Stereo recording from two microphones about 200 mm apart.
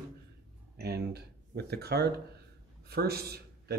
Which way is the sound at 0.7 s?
55° right (ahead or behind).